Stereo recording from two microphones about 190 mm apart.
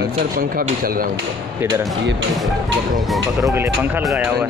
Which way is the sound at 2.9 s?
Centre (ahead or behind).